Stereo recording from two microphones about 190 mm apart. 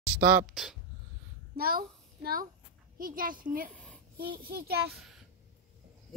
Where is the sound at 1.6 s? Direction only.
50° right (ahead or behind).